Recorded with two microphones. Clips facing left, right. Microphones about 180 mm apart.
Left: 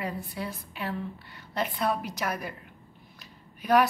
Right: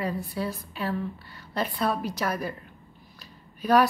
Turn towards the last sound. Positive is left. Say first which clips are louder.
# right 2 dB
turn(degrees=20)  # may be behind; listen again after turning